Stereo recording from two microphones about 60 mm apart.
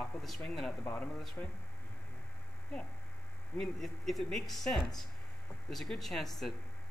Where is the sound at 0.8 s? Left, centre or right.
Left.